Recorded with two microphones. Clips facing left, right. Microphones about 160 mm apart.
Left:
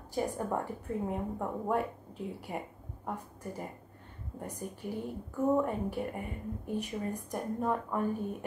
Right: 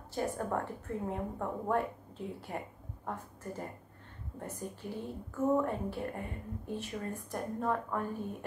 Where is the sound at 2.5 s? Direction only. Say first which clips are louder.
Left 1 dB; 10° left (ahead or behind).